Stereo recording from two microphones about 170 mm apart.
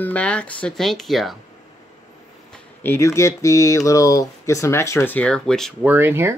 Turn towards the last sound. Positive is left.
turn(degrees=-15)  # may be behind; listen again after turning